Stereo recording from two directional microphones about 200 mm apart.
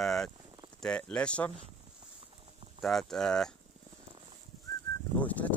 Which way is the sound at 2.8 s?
Centre (ahead or behind).